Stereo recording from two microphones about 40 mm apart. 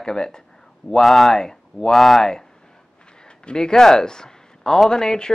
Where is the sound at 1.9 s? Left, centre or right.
Centre.